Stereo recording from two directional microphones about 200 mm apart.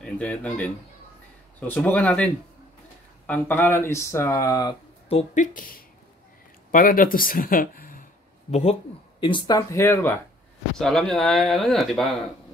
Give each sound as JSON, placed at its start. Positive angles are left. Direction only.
{"t": 0.0, "sound": "speech", "side_deg": 5}
{"t": 1.7, "sound": "speech", "side_deg": 10}
{"t": 5.3, "sound": "speech", "side_deg": 40}
{"t": 9.2, "sound": "speech", "side_deg": 20}
{"t": 10.8, "sound": "speech", "side_deg": 0}